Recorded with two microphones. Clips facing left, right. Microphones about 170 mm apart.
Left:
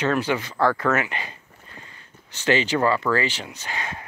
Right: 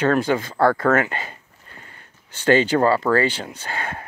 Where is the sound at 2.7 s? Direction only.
35° right (ahead or behind); by 4.1 s 55° right (ahead or behind).